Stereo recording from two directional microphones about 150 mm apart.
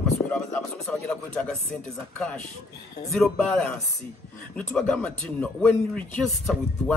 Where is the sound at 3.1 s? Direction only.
Centre (ahead or behind).